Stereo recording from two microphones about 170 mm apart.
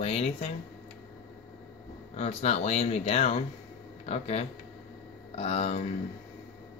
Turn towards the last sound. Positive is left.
turn(degrees=40)  # may be behind; listen again after turning